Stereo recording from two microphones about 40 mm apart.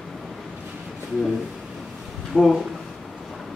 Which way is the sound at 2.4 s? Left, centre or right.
Left.